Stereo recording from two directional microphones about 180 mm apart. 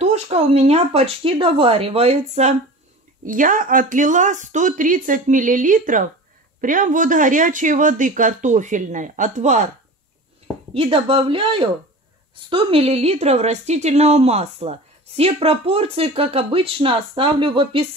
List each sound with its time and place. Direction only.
0.0 s a woman's voice: 35° right (ahead or behind)
3.3 s speech: 50° right (ahead or behind)
10.7 s a woman's voice: 30° right (ahead or behind)